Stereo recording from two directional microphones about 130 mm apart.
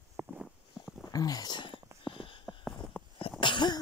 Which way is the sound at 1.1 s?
30° left (ahead or behind).